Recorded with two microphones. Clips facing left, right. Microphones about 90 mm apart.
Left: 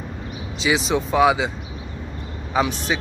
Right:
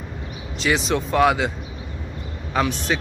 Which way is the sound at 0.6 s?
Centre (ahead or behind).